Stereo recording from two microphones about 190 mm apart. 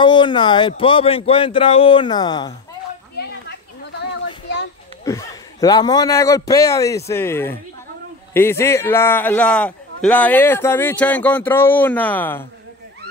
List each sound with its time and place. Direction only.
0.0 s speech: 25° left (ahead or behind)
5.0 s a man's voice: 15° left (ahead or behind)